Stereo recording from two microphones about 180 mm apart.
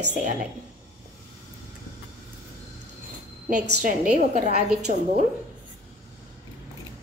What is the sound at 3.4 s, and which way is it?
A woman's voice, 50° right (ahead or behind).